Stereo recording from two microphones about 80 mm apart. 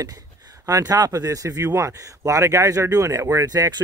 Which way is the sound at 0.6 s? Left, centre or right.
Right.